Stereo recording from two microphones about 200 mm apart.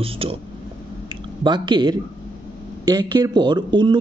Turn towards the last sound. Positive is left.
turn(degrees=-20)  # may be behind; listen again after turning